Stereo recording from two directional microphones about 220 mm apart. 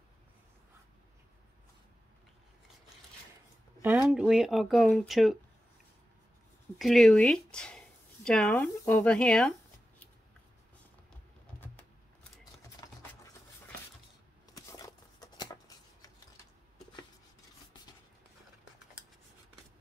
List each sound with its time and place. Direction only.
3.8 s speech: 10° right (ahead or behind)
6.8 s speech: centre (ahead or behind)
12.8 s sewing machine: 20° left (ahead or behind)
14.5 s a sound: 15° left (ahead or behind)